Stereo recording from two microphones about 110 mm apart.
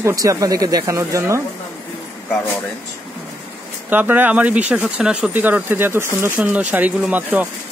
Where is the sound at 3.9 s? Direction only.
15° right (ahead or behind).